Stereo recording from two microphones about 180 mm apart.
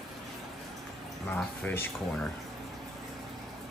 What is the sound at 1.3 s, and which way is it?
Speech, 10° left (ahead or behind).